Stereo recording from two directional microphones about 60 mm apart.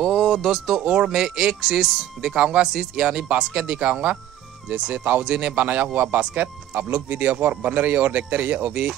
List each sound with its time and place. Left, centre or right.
0.0 s speech: centre
0.7 s speech: centre